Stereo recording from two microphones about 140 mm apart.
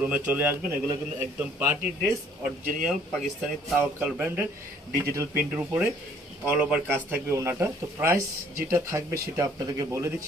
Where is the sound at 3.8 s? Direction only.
15° right (ahead or behind).